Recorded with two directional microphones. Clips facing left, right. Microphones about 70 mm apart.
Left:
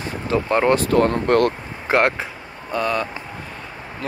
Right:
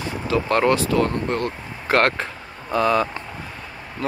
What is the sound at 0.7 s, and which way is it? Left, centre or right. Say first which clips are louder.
Speech: left 3 dB; left.